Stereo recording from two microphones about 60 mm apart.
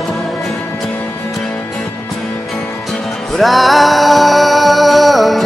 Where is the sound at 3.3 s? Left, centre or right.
Centre.